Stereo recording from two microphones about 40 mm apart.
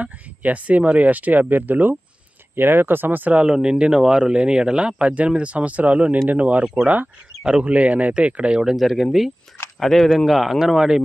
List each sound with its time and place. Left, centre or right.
0.0 s speech: right
2.5 s speech: right
3.4 s speech: right
8.7 s speech: centre
10.2 s speech: centre